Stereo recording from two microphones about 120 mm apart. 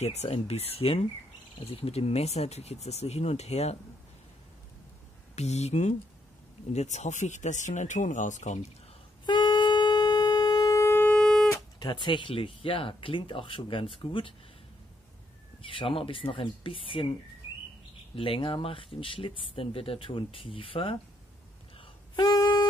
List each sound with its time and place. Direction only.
0.0 s speech: 65° left (ahead or behind)
5.3 s speech: 65° left (ahead or behind); by 8.5 s 85° left
9.2 s wind instrument: 40° left (ahead or behind); by 11.1 s 20° left (ahead or behind)
11.1 s music: 5° left (ahead or behind)
11.5 s speech: 35° left (ahead or behind)
15.6 s speech: 45° left (ahead or behind)
18.1 s speech: 50° left (ahead or behind)
21.7 s wind instrument: 40° left (ahead or behind)